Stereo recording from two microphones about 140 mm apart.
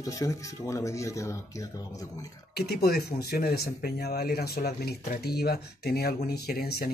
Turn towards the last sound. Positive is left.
turn(degrees=90)